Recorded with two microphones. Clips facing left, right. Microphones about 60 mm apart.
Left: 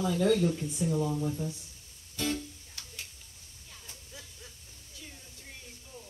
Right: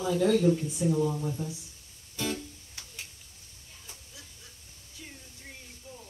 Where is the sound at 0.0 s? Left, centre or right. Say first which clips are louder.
Right 2 dB; centre.